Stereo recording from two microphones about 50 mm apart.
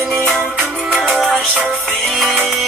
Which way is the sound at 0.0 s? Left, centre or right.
Centre.